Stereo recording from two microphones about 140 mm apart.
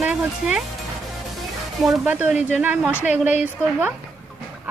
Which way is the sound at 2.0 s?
10° right (ahead or behind).